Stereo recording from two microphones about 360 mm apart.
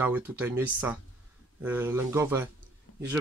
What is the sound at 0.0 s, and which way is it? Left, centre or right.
Speech, centre.